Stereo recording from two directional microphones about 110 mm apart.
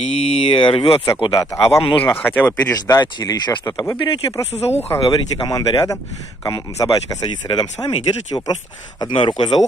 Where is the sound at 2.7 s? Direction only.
35° left (ahead or behind).